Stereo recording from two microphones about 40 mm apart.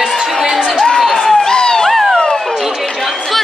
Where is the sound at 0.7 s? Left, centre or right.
Left.